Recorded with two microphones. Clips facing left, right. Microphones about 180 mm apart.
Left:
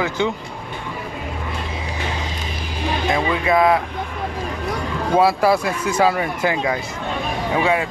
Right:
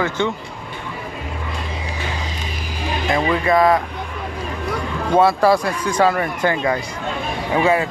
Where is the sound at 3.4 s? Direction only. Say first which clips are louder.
Right 1 dB; 5° left (ahead or behind).